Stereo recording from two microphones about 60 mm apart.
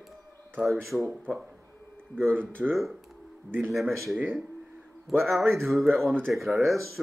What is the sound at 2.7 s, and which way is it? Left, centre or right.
Speech, centre.